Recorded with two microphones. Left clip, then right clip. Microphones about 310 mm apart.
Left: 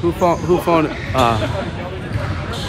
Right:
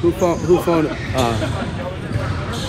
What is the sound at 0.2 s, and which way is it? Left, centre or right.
Speech, left.